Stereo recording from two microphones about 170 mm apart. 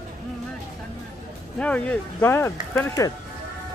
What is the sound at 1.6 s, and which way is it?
Speech, 5° left (ahead or behind).